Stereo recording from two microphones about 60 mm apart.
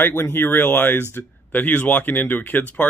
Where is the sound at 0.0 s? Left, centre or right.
Left.